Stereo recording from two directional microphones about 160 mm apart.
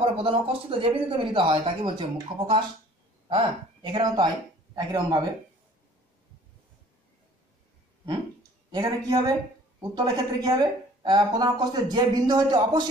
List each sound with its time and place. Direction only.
0.2 s a woman's voice: 35° right (ahead or behind)
8.7 s a woman's voice: 25° right (ahead or behind)